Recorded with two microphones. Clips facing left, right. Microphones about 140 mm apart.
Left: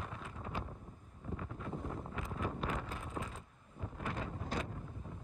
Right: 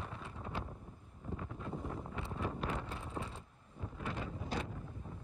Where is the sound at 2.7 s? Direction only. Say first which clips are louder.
Even; 30° right (ahead or behind).